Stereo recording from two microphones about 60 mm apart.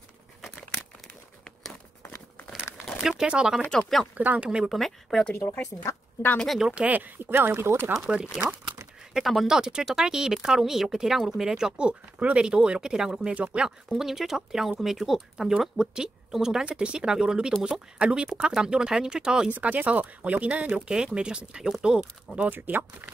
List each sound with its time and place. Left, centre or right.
2.8 s speech: centre
4.2 s speech: right
4.6 s speech: centre
5.3 s speech: left
6.7 s speech: right
8.1 s speech: centre
9.1 s speech: centre
9.5 s speech: centre
13.3 s speech: right
13.9 s speech: centre
19.5 s speech: right
22.5 s speech: right